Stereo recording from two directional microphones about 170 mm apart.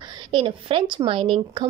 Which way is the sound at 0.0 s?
25° right (ahead or behind).